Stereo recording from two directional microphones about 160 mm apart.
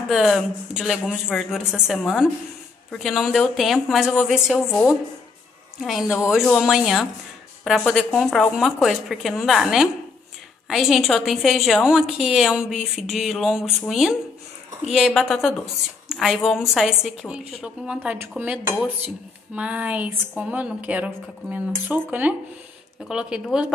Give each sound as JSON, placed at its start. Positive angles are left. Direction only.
{"t": 0.1, "sound": "a woman's voice", "side_deg": 0}